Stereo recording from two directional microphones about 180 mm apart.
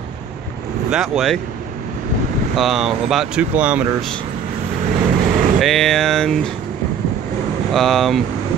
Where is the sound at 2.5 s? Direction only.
Centre (ahead or behind).